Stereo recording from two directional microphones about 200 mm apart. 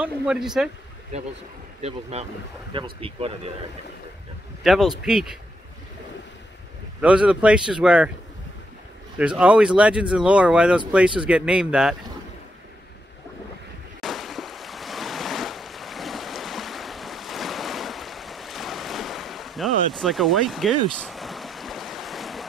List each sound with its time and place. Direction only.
0.0 s speech: 5° right (ahead or behind)
1.8 s speech: 30° right (ahead or behind)
4.6 s speech: centre (ahead or behind)
7.0 s speech: 5° right (ahead or behind)
9.4 s speech: 5° right (ahead or behind)
14.0 s waves: centre (ahead or behind)